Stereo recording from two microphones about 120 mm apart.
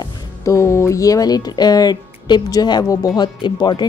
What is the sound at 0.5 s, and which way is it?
Speech, 25° left (ahead or behind).